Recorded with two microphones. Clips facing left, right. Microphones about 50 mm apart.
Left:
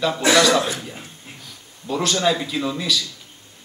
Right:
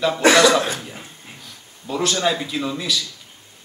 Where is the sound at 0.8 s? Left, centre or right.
Centre.